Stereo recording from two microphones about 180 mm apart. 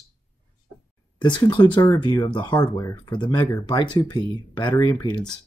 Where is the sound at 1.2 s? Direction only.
25° left (ahead or behind).